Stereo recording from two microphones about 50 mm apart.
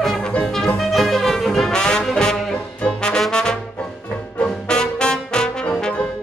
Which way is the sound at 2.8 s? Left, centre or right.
Centre.